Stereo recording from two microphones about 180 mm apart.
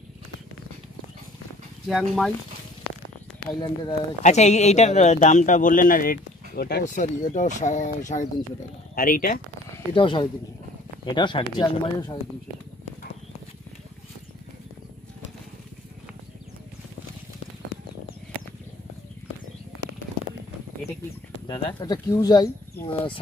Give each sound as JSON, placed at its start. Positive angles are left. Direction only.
{"t": 1.9, "sound": "speech", "side_deg": 0}
{"t": 4.2, "sound": "speech", "side_deg": 40}
{"t": 6.8, "sound": "speech", "side_deg": 45}
{"t": 9.9, "sound": "speech", "side_deg": 25}
{"t": 21.5, "sound": "speech", "side_deg": 25}